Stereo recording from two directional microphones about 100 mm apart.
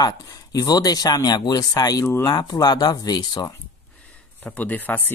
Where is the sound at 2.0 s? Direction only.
25° left (ahead or behind).